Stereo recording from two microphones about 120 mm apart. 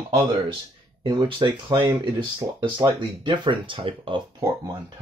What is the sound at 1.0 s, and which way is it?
Speech, 40° right (ahead or behind).